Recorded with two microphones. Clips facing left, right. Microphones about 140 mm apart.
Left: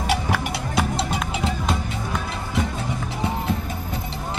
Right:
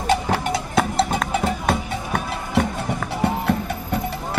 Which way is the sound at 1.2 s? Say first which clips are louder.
Right 4 dB; 50° right (ahead or behind).